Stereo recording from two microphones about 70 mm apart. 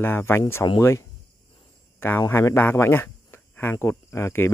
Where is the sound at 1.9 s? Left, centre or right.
Left.